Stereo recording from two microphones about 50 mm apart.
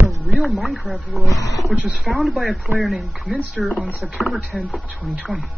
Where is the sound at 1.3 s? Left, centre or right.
Left.